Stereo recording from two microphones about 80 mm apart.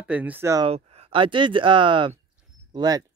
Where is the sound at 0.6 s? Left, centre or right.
Right.